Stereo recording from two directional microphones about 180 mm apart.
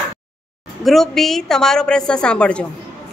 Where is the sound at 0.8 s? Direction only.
Centre (ahead or behind).